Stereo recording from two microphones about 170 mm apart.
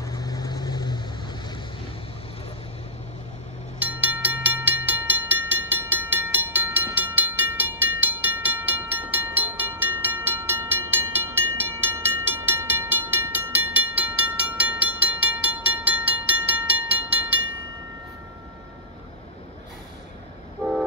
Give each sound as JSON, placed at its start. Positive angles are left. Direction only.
{"t": 0.0, "sound": "vehicle", "side_deg": 20}
{"t": 3.8, "sound": "train", "side_deg": -10}
{"t": 20.6, "sound": "vehicle", "side_deg": 5}